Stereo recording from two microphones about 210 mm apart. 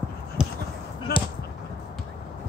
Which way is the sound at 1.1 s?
45° left (ahead or behind).